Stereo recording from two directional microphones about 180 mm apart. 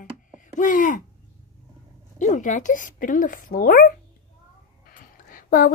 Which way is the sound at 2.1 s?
45° left (ahead or behind).